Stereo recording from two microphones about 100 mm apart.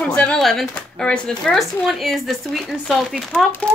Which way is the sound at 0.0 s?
15° left (ahead or behind).